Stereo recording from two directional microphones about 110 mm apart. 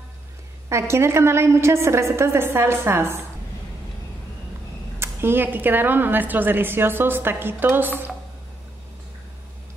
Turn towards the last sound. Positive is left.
turn(degrees=-20)  # may be behind; listen again after turning